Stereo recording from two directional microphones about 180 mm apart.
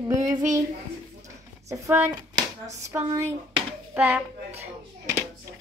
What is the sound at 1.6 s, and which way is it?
Speech, 15° right (ahead or behind).